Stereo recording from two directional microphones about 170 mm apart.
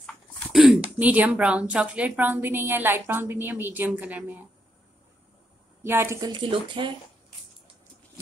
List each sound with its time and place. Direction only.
0.0 s speech: centre (ahead or behind)
5.9 s speech: 15° right (ahead or behind)
6.3 s speech: 30° right (ahead or behind)